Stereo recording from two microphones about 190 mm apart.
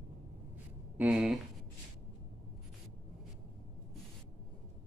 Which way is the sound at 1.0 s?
5° right (ahead or behind).